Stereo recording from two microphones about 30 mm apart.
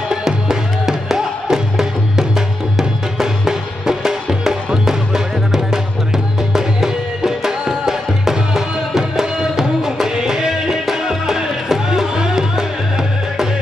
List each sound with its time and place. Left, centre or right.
0.5 s music: centre